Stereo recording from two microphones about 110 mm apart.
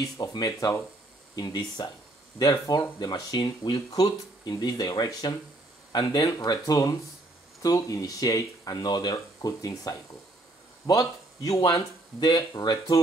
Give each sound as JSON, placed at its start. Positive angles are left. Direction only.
{"t": 0.0, "sound": "speech", "side_deg": 35}